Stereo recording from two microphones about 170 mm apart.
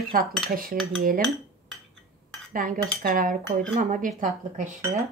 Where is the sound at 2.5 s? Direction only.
55° right (ahead or behind).